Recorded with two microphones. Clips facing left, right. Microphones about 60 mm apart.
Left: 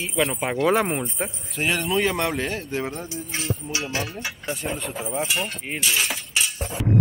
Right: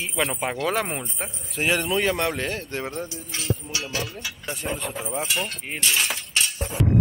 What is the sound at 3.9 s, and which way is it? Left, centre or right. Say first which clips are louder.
Speech: left 2 dB; left.